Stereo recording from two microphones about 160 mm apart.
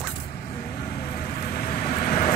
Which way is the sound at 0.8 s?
65° left (ahead or behind).